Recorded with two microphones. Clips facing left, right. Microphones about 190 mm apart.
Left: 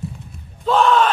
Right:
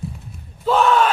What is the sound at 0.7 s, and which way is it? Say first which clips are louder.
Yell: left 1 dB; 5° right (ahead or behind).